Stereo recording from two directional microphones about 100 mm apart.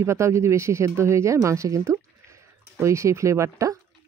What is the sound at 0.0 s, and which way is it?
Speech, 30° right (ahead or behind).